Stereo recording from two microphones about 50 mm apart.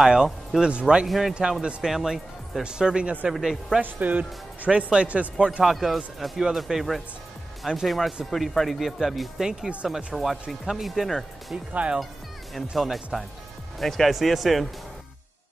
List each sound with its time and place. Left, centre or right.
0.0 s speech: centre
1.0 s speech: centre
2.6 s speech: centre
3.3 s speech: centre
3.8 s speech: right
5.6 s speech: centre
11.7 s speech: right
12.7 s speech: centre